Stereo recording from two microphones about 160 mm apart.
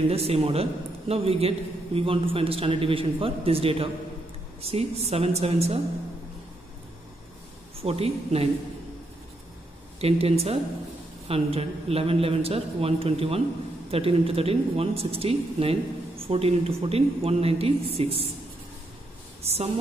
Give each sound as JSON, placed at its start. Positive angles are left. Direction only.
{"t": 0.1, "sound": "speech", "side_deg": -40}
{"t": 7.8, "sound": "speech", "side_deg": -40}
{"t": 9.9, "sound": "speech", "side_deg": -40}
{"t": 19.4, "sound": "a woman's voice", "side_deg": -40}